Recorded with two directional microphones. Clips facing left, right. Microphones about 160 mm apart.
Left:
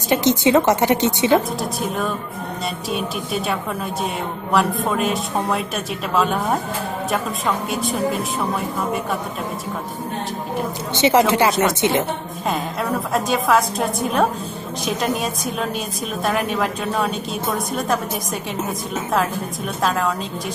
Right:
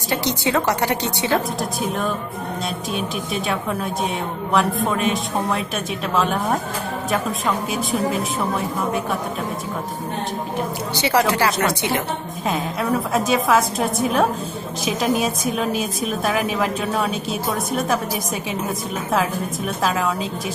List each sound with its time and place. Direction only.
0.1 s a woman's voice: 20° left (ahead or behind)
1.6 s a woman's voice: centre (ahead or behind)
7.7 s a woman's voice: centre (ahead or behind)
11.0 s a woman's voice: 20° left (ahead or behind)
13.1 s a woman's voice: centre (ahead or behind)
19.8 s a woman's voice: centre (ahead or behind)